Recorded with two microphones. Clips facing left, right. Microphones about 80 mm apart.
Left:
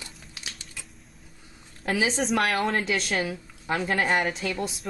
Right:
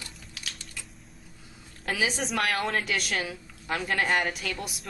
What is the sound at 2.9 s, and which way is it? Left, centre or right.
A woman's voice, left.